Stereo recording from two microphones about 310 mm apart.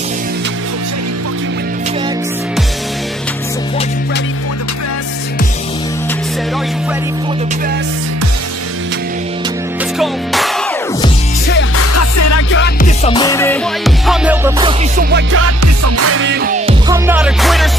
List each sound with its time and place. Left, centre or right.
9.9 s music: centre
11.7 s music: left
12.4 s music: left; by 14.5 s centre
15.0 s music: right
15.3 s music: right; by 17.6 s centre